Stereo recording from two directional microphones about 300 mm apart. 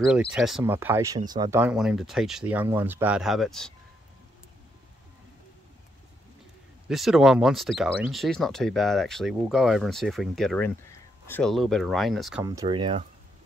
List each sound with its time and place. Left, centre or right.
0.0 s speech: centre
6.9 s speech: centre
12.4 s speech: centre